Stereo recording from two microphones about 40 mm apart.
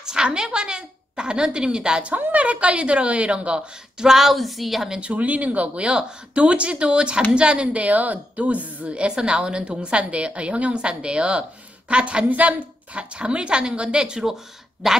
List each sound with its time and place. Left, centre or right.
0.0 s a woman's voice: right
2.0 s speech: right
4.1 s a woman's voice: centre
5.0 s a woman's voice: right
12.3 s a woman's voice: right
12.9 s speech: right; by 15.0 s centre